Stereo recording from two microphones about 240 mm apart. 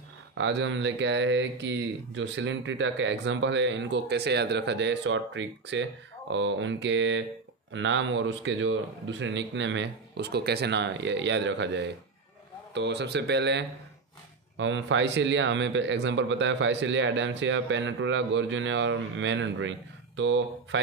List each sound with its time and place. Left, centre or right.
0.3 s a man's voice: right